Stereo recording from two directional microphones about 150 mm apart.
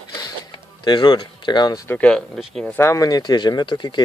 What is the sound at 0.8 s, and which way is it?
Speech, 30° left (ahead or behind).